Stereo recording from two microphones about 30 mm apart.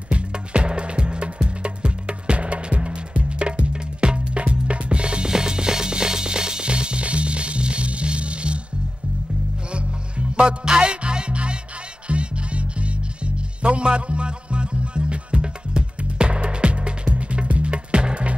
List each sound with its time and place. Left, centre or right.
0.1 s music: right
5.3 s music: right
9.7 s music: right